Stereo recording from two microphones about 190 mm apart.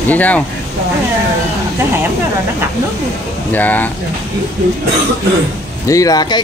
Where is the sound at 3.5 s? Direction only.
10° left (ahead or behind).